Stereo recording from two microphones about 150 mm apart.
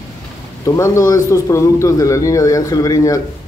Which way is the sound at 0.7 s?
20° left (ahead or behind).